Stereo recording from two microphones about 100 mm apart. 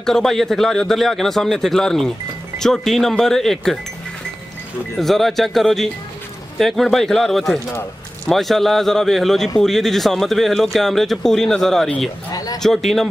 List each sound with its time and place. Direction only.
0.0 s speech: 5° left (ahead or behind)
4.9 s speech: centre (ahead or behind)
12.3 s a sound: 40° left (ahead or behind)
12.5 s speech: 5° left (ahead or behind)